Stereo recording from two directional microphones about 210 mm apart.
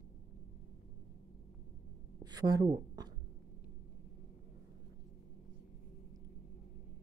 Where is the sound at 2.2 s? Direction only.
20° right (ahead or behind).